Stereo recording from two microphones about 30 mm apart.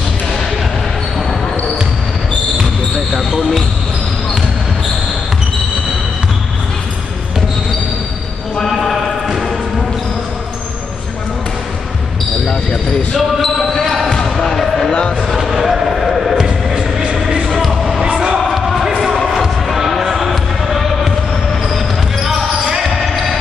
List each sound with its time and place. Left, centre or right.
3.2 s basketball bounce: centre
8.6 s clip-clop: centre
13.4 s basketball bounce: centre
14.9 s a sound: left
15.4 s basketball bounce: centre
17.3 s music: right
18.4 s basketball bounce: centre
19.1 s music: centre
19.7 s basketball bounce: centre
20.2 s music: centre
21.6 s basketball bounce: centre